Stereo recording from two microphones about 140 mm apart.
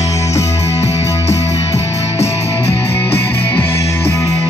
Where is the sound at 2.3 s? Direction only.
45° left (ahead or behind).